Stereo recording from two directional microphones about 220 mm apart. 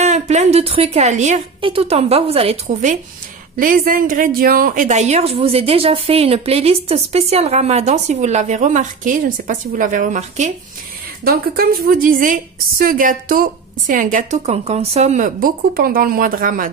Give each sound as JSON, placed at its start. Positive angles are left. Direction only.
{"t": 0.0, "sound": "a woman's voice", "side_deg": -30}
{"t": 11.2, "sound": "speech", "side_deg": -45}